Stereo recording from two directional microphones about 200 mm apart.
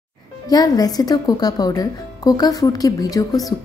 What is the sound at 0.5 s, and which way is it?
A woman's voice, 20° left (ahead or behind).